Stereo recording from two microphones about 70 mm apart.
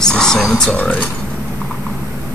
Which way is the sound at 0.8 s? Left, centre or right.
Left.